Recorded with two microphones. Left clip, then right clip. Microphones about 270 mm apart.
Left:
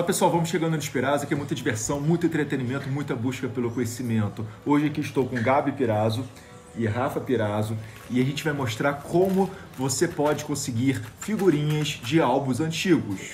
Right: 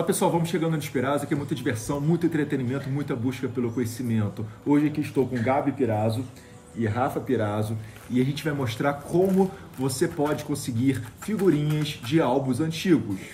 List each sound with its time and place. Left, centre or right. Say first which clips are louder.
0.0 s speech: left 1 dB; centre